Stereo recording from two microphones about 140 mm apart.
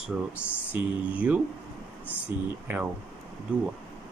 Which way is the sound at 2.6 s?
10° right (ahead or behind).